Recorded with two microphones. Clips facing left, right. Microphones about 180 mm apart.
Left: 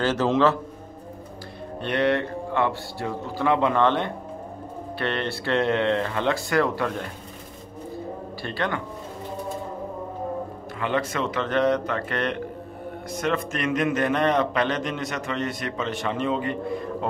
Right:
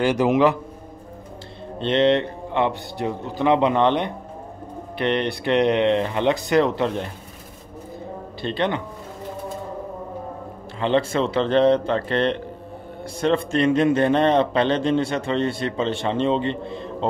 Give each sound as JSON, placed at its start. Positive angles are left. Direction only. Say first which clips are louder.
{"t": 0.0, "sound": "a man's voice", "louder": "right 3 dB", "side_deg": -15}
{"t": 1.8, "sound": "a man's voice", "louder": "right 5 dB", "side_deg": -25}
{"t": 8.4, "sound": "a man's voice", "louder": "right 5 dB", "side_deg": -20}
{"t": 10.8, "sound": "a man's voice", "louder": "right 5 dB", "side_deg": -30}